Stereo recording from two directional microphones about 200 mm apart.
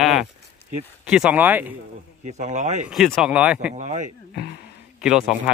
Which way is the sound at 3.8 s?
35° right (ahead or behind).